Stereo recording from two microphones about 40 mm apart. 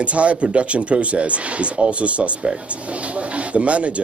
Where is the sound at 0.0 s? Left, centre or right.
Right.